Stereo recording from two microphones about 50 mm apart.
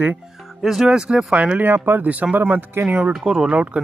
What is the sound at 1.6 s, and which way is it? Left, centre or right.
Speech, right.